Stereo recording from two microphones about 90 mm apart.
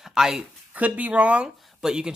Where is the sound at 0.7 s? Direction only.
15° right (ahead or behind).